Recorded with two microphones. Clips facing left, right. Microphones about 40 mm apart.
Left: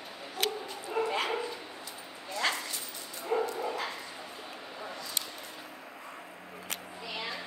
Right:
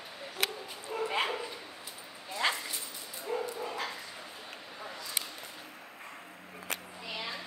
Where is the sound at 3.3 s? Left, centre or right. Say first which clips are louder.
Left 5 dB; left.